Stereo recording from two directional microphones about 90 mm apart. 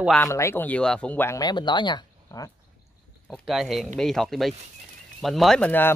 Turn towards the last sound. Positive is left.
turn(degrees=20)  # may be behind; listen again after turning